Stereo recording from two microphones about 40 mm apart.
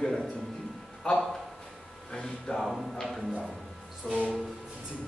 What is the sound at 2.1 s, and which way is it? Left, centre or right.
Speech, centre.